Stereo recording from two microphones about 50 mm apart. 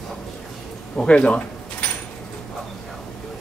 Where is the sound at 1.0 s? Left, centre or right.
Left.